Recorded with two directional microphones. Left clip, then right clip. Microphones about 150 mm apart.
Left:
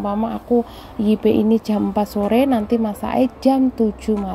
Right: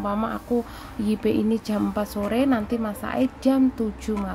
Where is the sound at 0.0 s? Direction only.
10° left (ahead or behind).